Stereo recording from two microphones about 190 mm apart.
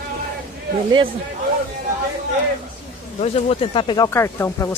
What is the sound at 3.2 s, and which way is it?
Speech, 30° left (ahead or behind).